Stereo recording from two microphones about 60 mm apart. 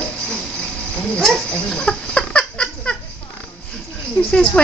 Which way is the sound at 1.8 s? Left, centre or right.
Centre.